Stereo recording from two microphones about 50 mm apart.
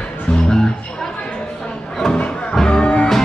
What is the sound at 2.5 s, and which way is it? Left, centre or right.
Music, centre.